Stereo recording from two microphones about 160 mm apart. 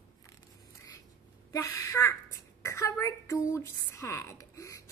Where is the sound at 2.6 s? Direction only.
20° left (ahead or behind).